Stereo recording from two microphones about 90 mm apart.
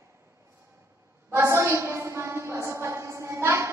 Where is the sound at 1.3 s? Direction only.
30° right (ahead or behind).